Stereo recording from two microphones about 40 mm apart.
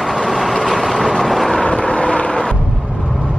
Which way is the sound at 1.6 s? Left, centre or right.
Left.